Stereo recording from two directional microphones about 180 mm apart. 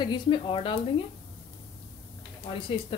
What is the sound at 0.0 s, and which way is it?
Speech, 25° left (ahead or behind).